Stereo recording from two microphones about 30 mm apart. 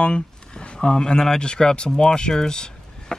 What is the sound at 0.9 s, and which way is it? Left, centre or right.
Speech, left.